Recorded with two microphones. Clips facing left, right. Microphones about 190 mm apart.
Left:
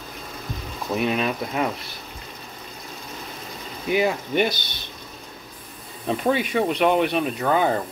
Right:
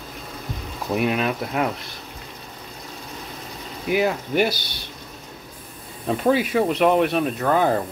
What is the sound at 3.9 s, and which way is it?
Speech, centre (ahead or behind).